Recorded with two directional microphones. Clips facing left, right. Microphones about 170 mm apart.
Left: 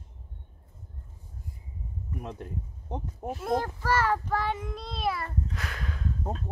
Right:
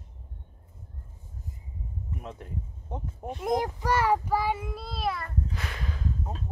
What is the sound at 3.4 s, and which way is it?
Child singing, 15° right (ahead or behind).